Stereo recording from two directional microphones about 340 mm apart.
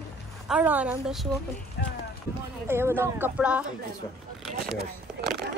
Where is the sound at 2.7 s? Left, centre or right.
Centre.